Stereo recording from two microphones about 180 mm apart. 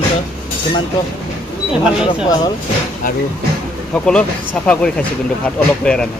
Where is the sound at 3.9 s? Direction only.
5° left (ahead or behind).